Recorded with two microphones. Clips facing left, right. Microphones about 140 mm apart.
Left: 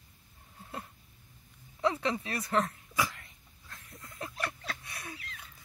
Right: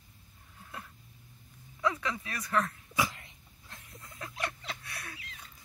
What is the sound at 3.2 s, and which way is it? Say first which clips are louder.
Dog: right 1 dB; 25° right (ahead or behind).